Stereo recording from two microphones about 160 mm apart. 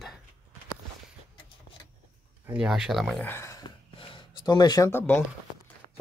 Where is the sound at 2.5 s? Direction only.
5° right (ahead or behind).